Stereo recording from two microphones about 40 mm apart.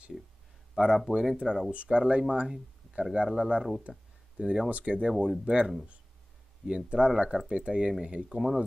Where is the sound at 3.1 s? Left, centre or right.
Centre.